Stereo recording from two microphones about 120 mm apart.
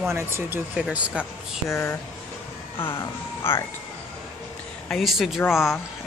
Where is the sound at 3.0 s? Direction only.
20° left (ahead or behind).